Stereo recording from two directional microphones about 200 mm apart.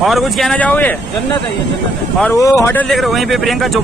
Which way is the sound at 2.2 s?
15° left (ahead or behind).